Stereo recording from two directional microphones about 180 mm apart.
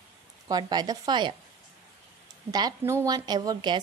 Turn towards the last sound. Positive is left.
turn(degrees=-25)  # may be behind; listen again after turning